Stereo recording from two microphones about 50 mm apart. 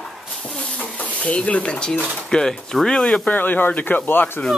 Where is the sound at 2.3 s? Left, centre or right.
Centre.